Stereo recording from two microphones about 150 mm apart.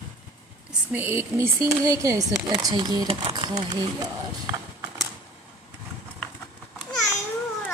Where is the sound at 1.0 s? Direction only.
15° right (ahead or behind).